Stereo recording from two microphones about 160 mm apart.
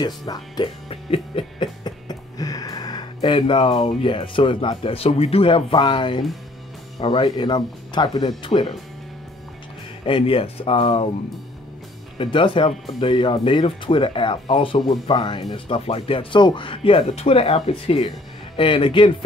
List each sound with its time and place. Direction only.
0.0 s speech: 25° left (ahead or behind)
0.8 s a sound: 35° left (ahead or behind)
3.2 s speech: 30° left (ahead or behind)
10.0 s speech: 35° left (ahead or behind)
12.2 s speech: 30° left (ahead or behind)